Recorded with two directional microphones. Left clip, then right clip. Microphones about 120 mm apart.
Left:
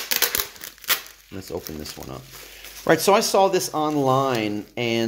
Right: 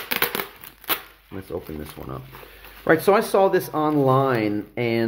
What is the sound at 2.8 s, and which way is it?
Speech, 25° left (ahead or behind).